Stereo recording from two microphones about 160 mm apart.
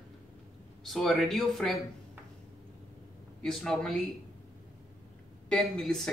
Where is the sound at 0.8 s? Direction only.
Centre (ahead or behind).